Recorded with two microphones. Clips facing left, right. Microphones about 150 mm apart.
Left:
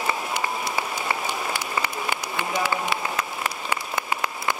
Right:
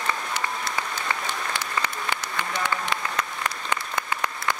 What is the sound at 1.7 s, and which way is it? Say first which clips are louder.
Applause: left 2 dB; 10° left (ahead or behind).